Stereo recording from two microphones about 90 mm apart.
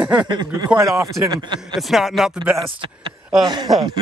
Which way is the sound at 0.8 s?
35° right (ahead or behind).